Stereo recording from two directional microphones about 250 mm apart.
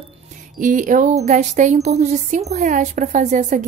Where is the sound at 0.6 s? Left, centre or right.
Right.